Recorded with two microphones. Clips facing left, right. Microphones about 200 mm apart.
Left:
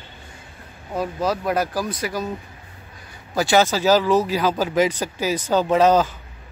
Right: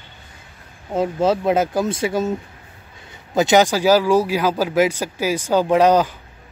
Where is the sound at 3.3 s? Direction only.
20° right (ahead or behind).